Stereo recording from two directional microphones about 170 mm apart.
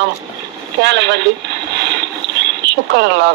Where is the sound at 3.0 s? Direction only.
90° right.